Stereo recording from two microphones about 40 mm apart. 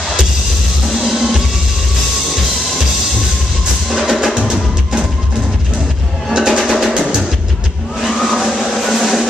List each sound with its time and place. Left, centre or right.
1.0 s music: centre
4.0 s music: centre
4.4 s music: right
6.3 s music: centre
8.2 s music: centre